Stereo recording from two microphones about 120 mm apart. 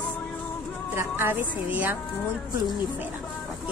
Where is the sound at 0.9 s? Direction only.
15° right (ahead or behind).